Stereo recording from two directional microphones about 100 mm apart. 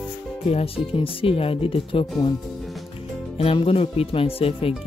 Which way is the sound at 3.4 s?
70° left (ahead or behind).